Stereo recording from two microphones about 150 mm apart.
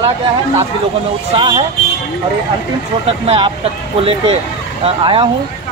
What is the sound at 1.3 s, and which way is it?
Speech, 35° right (ahead or behind).